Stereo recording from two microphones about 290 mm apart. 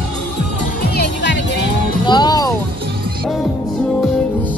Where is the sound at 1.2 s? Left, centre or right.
Left.